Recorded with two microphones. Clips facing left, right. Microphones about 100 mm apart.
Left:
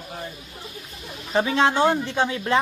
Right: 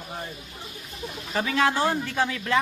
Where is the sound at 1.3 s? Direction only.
25° left (ahead or behind).